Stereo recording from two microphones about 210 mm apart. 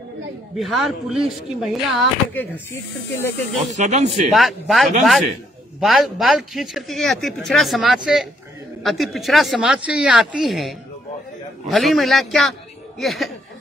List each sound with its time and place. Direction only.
0.6 s speech: centre (ahead or behind)
3.7 s speech: 35° right (ahead or behind)
4.3 s speech: centre (ahead or behind)